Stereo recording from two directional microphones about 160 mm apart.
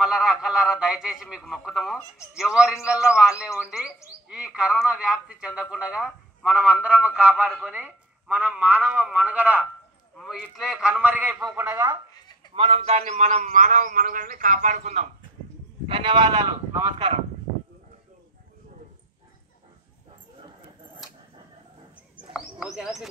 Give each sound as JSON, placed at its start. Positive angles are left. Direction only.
{"t": 0.0, "sound": "a man's voice", "side_deg": 0}
{"t": 12.5, "sound": "a man's voice", "side_deg": -35}
{"t": 15.9, "sound": "speech", "side_deg": -30}
{"t": 22.3, "sound": "a sound", "side_deg": -5}